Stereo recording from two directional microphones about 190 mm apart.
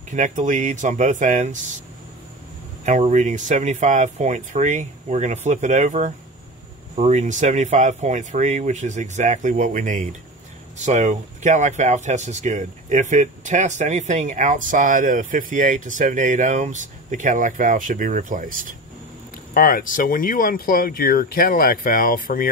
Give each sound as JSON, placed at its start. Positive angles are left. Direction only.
{"t": 0.1, "sound": "speech", "side_deg": -40}
{"t": 2.8, "sound": "speech", "side_deg": -40}
{"t": 19.5, "sound": "speech", "side_deg": 50}